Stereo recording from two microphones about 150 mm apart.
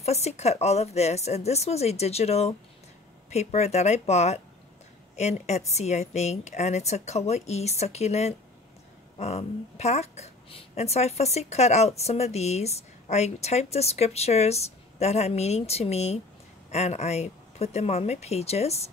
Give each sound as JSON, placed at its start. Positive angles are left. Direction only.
{"t": 0.0, "sound": "a woman's voice", "side_deg": 45}